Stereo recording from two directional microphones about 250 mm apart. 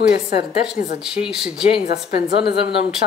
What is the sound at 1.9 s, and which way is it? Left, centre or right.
Speech, left.